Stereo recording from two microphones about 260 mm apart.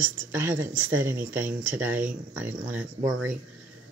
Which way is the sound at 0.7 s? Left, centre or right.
Right.